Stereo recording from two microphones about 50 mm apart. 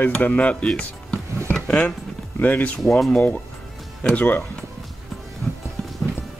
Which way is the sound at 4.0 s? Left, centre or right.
Left.